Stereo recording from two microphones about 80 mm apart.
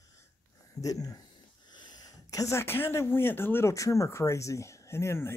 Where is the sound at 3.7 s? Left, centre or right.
Left.